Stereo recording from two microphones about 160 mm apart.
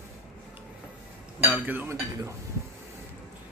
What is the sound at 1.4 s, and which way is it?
Speech, 10° right (ahead or behind).